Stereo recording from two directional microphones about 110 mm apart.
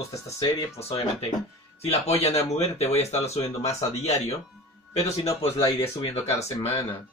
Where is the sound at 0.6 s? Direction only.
60° left (ahead or behind).